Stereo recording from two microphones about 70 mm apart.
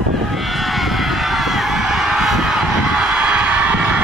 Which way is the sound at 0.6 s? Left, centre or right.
Centre.